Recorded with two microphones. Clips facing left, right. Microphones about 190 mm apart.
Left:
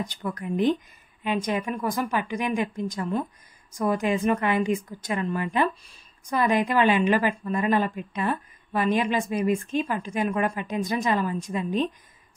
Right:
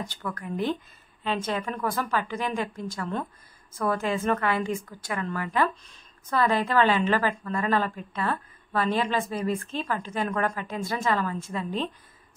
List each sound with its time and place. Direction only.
0.0 s a woman's voice: 15° left (ahead or behind)